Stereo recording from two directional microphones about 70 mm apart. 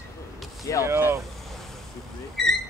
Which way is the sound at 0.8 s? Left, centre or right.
Right.